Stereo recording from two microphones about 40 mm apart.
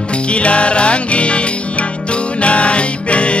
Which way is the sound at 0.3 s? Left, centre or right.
Left.